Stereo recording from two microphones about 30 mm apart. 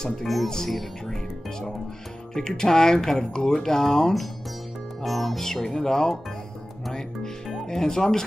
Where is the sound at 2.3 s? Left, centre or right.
Left.